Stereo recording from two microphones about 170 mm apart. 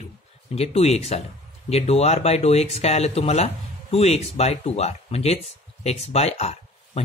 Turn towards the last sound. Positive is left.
turn(degrees=40)  # may be behind; listen again after turning